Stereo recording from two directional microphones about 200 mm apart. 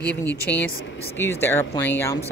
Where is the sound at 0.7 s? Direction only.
75° left (ahead or behind).